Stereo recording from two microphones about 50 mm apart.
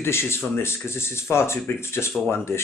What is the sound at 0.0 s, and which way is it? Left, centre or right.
Speech, left.